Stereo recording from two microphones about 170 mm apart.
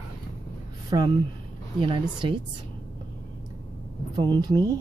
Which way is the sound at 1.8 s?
30° right (ahead or behind).